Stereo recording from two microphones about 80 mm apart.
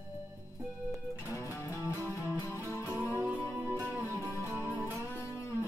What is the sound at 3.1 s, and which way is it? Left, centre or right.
Music, right.